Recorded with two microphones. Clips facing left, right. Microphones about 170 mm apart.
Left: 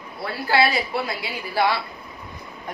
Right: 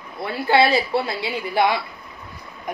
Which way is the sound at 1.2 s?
20° right (ahead or behind).